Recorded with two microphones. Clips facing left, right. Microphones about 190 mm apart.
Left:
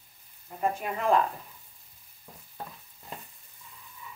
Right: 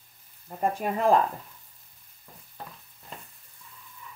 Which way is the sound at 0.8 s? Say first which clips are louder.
Right 5 dB; 40° right (ahead or behind).